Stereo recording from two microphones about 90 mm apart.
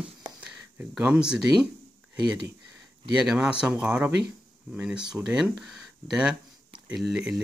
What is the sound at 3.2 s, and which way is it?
Speech, 10° right (ahead or behind).